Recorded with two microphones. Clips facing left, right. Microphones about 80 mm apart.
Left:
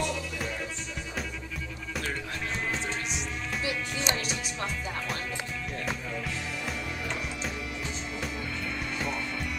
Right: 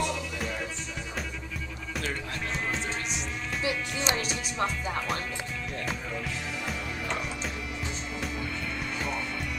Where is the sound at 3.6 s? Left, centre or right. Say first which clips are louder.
Right 3 dB; right.